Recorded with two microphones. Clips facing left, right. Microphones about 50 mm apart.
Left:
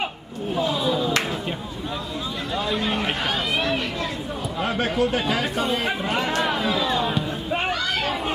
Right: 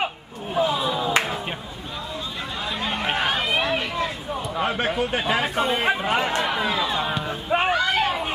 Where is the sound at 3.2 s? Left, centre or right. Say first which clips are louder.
Right 2 dB; centre.